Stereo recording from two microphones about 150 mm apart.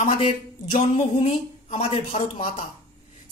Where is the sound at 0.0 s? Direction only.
50° left (ahead or behind).